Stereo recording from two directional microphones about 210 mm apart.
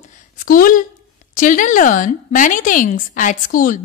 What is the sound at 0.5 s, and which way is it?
Speech, 40° left (ahead or behind).